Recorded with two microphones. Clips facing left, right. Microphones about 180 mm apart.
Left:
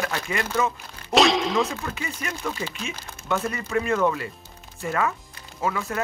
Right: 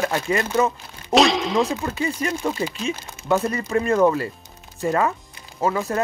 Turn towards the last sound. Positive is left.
turn(degrees=-35)  # may be behind; listen again after turning